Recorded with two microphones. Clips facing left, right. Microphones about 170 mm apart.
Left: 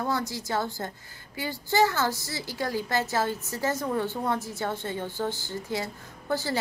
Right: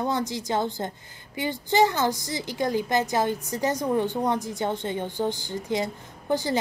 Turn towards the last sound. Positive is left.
turn(degrees=-20)  # may be behind; listen again after turning